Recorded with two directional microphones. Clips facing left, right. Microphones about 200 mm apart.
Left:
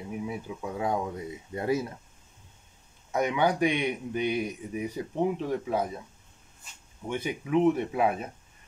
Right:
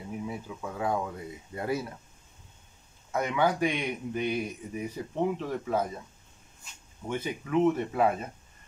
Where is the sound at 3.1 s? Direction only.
15° left (ahead or behind).